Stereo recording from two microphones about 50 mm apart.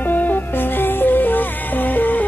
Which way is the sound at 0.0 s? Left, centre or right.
Left.